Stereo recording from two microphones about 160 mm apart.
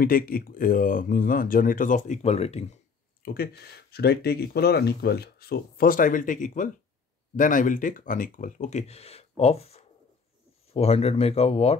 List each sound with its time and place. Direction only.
0.0 s speech: 65° left (ahead or behind); by 2.8 s 40° left (ahead or behind)
3.2 s a sound: 70° left (ahead or behind)
3.9 s speech: 85° left; by 11.7 s 40° left (ahead or behind)